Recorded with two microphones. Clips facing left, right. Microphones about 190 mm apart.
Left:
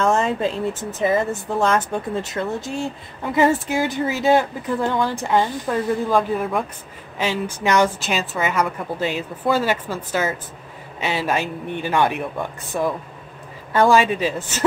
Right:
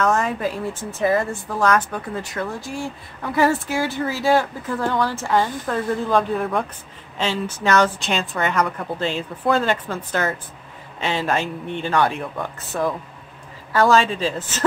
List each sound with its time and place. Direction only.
0.0 s a woman's voice: 25° left (ahead or behind)
6.0 s a man's voice: 5° left (ahead or behind)